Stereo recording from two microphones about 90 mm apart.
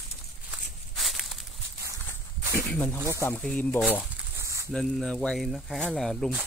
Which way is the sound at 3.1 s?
35° left (ahead or behind).